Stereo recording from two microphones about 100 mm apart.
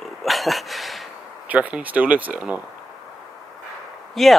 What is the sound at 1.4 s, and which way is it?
Speech, 15° right (ahead or behind).